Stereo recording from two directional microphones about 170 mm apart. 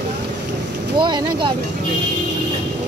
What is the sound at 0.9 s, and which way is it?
Speech, 30° right (ahead or behind).